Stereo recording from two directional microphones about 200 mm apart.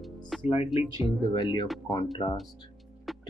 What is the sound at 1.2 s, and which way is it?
Speech, 20° left (ahead or behind).